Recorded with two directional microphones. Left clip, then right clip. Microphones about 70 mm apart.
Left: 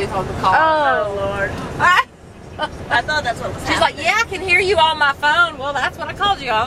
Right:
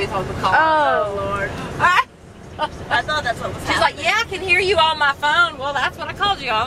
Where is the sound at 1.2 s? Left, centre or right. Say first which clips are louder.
Left 2 dB; centre.